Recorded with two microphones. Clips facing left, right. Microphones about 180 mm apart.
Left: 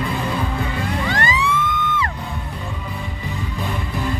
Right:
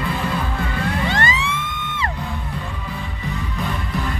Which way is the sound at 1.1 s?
25° right (ahead or behind).